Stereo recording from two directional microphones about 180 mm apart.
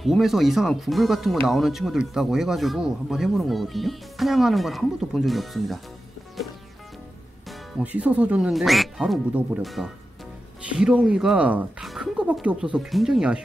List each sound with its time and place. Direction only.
0.0 s speech: centre (ahead or behind)
7.4 s speech: 5° right (ahead or behind)